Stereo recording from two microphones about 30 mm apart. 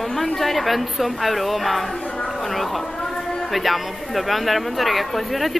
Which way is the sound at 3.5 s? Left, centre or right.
Centre.